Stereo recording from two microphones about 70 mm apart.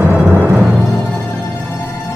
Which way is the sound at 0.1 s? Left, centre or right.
Right.